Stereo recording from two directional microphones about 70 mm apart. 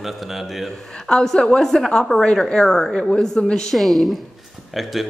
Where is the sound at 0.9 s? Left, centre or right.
Centre.